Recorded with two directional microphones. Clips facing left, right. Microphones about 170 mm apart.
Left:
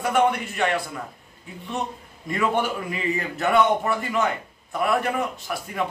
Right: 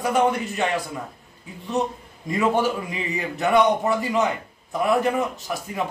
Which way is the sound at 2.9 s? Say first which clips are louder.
Left 1 dB; 20° right (ahead or behind).